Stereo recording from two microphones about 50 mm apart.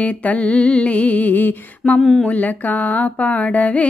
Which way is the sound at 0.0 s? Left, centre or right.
Left.